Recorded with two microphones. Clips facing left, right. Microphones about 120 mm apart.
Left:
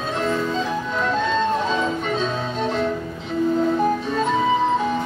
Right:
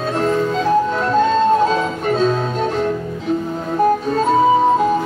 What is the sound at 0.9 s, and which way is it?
Music, 40° right (ahead or behind).